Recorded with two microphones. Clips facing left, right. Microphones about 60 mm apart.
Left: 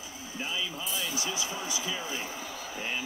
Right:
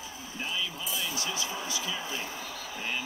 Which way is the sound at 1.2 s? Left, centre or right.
Centre.